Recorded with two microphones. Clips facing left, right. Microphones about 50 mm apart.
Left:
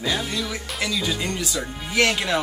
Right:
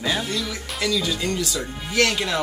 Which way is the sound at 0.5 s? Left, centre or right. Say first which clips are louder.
Right 2 dB; centre.